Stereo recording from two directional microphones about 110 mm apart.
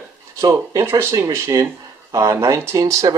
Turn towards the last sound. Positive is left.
turn(degrees=-30)  # may be behind; listen again after turning